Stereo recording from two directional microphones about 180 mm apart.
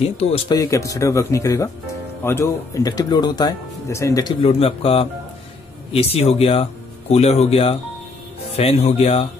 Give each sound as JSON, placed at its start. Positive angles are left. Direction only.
{"t": 0.5, "sound": "speech", "side_deg": 20}
{"t": 4.4, "sound": "speech", "side_deg": 30}